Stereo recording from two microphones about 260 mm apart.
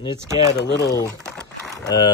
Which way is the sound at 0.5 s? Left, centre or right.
Left.